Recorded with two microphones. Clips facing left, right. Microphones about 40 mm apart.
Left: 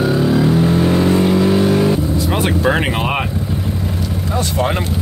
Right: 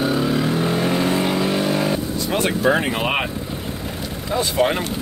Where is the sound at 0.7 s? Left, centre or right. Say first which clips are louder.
Left 5 dB; centre.